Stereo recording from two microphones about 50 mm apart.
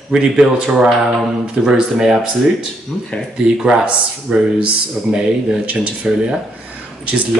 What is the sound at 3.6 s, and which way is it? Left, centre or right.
Speech, centre.